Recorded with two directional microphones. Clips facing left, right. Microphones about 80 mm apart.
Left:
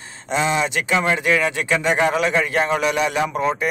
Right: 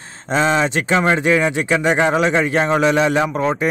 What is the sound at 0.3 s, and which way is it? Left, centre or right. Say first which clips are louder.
A man's voice: right 4 dB; right.